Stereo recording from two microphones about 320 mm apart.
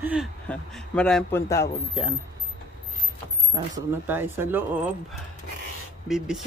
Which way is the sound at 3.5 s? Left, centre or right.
Centre.